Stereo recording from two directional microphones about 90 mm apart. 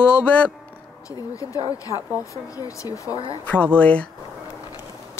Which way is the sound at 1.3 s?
40° left (ahead or behind).